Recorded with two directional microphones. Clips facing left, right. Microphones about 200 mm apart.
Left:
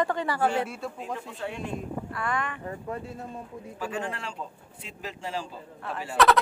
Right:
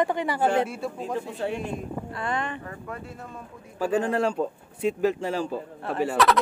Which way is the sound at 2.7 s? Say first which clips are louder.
Left 2 dB; 25° left (ahead or behind).